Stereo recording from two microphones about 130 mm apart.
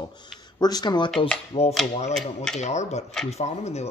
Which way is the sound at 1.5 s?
50° left (ahead or behind).